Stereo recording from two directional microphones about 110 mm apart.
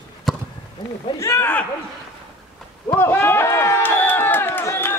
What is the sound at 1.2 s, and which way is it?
Speech, 20° left (ahead or behind).